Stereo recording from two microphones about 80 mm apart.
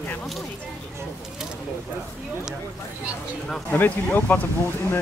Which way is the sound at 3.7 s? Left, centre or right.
Left.